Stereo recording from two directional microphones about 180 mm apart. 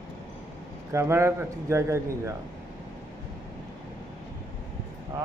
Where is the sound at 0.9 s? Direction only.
15° right (ahead or behind).